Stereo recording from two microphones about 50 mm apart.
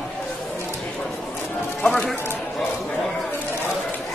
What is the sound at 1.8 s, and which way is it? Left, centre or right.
Speech, left.